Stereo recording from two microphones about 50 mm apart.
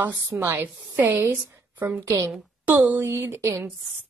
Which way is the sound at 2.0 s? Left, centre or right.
Right.